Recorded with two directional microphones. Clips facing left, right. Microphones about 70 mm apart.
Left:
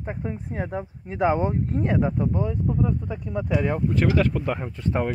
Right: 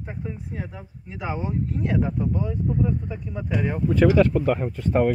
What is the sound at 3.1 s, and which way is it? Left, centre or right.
Speech, left.